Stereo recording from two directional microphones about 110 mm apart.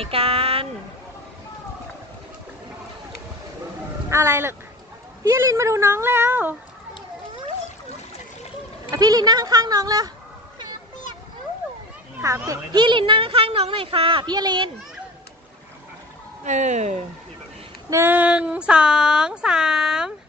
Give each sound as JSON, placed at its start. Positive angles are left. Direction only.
{"t": 0.0, "sound": "speech", "side_deg": -60}
{"t": 4.1, "sound": "a woman's voice", "side_deg": -25}
{"t": 8.9, "sound": "speech", "side_deg": -35}
{"t": 12.4, "sound": "speech", "side_deg": -45}
{"t": 16.4, "sound": "speech", "side_deg": -90}
{"t": 17.8, "sound": "a sound", "side_deg": -20}